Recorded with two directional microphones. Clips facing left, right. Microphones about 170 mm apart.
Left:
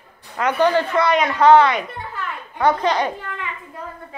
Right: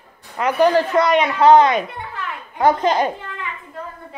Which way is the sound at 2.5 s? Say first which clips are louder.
Right 2 dB; 25° right (ahead or behind).